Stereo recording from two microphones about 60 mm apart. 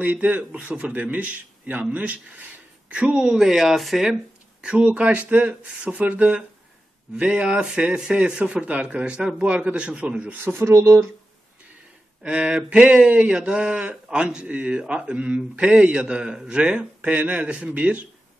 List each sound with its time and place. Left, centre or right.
0.0 s speech: right
10.4 s speech: right
10.7 s speech: right
12.2 s speech: centre